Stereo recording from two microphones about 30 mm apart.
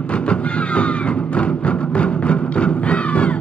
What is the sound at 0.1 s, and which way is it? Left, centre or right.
Music, left.